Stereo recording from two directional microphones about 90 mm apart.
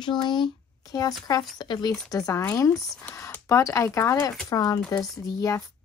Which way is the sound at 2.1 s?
40° left (ahead or behind).